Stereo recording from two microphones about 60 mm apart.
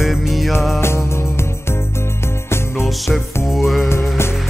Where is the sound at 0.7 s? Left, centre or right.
Left.